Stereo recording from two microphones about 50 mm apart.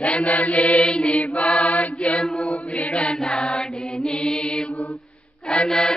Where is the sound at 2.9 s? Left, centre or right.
Centre.